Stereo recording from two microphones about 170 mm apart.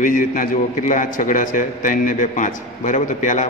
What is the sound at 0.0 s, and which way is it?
A man's voice, 50° left (ahead or behind).